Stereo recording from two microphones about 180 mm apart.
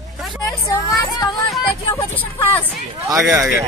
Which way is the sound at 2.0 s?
15° left (ahead or behind).